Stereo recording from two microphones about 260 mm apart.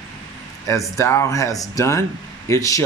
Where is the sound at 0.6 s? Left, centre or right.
Centre.